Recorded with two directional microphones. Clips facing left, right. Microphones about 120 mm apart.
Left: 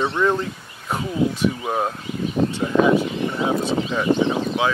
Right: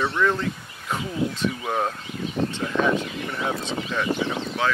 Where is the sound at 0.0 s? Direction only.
20° left (ahead or behind).